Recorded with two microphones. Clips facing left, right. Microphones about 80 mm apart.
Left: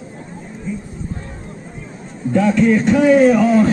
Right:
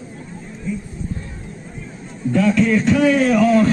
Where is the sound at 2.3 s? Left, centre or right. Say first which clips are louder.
Left 2 dB; centre.